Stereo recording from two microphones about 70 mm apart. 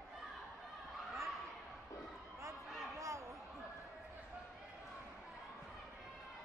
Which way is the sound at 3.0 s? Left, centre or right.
Right.